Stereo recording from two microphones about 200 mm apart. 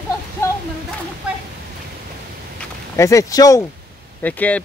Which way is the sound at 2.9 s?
15° left (ahead or behind).